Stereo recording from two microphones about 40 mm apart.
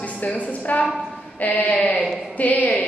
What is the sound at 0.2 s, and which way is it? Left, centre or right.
A woman's voice, left.